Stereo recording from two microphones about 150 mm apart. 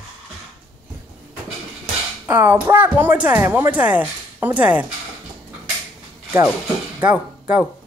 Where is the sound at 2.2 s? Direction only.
10° right (ahead or behind).